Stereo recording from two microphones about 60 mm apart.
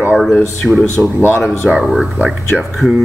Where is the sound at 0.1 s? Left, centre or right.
Centre.